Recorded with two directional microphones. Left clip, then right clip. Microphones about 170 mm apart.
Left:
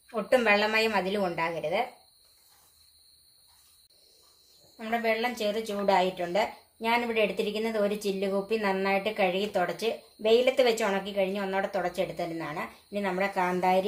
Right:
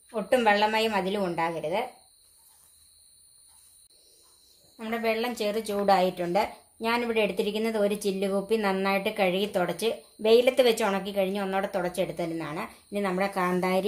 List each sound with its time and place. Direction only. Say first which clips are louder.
0.1 s a woman's voice: right 1 dB; 20° right (ahead or behind)
4.7 s speech: even; 30° right (ahead or behind)